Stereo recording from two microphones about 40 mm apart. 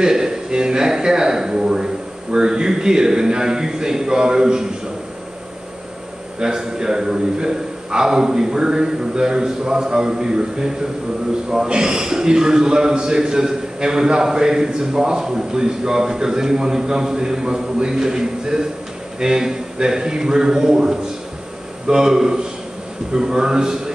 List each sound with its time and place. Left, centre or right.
0.0 s a man's voice: centre
6.4 s a man's voice: centre